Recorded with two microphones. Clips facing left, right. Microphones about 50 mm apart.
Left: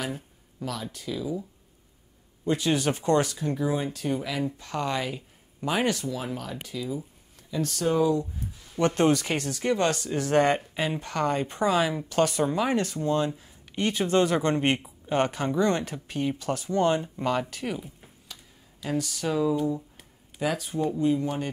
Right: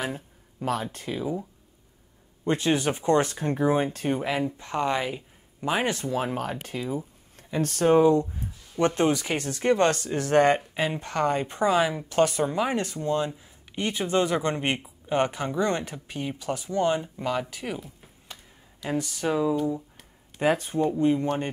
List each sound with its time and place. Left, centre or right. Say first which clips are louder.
0.0 s a sound: right 2 dB; right
0.9 s speech: right 1 dB; right
2.4 s speech: right 1 dB; right
3.2 s speech: right 2 dB; right
8.7 s speech: even; centre
9.4 s speech: right 3 dB; right; by 15.6 s centre
15.6 s speech: left 1 dB; right
17.0 s speech: left 1 dB; centre
18.9 s speech: right 1 dB; centre
20.3 s speech: right 4 dB; right